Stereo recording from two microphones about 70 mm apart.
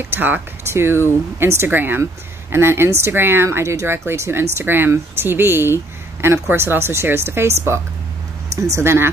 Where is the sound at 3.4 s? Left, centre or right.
Right.